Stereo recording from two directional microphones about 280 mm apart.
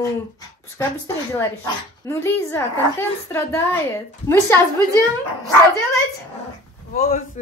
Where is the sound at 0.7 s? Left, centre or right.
Centre.